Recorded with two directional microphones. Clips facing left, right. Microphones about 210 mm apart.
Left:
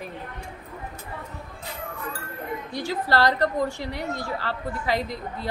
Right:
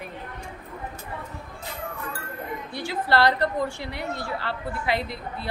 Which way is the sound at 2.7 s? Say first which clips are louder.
Even; 40° left (ahead or behind).